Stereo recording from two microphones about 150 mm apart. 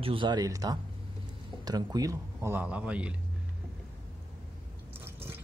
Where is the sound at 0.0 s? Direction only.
35° right (ahead or behind); by 3.2 s 10° right (ahead or behind).